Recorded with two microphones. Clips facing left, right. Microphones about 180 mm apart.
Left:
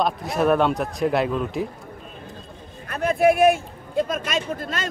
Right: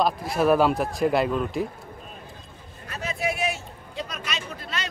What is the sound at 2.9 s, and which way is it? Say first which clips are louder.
A man's voice: left 11 dB; 55° left (ahead or behind).